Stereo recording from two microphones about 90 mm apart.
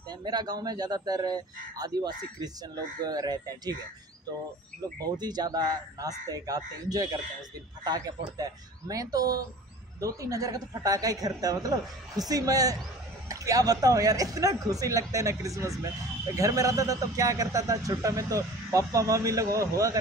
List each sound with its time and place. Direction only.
0.1 s a man's voice: 50° right (ahead or behind)
5.0 s a man's voice: 50° right (ahead or behind)